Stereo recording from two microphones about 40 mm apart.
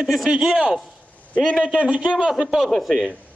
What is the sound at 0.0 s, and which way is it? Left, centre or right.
Speech, centre.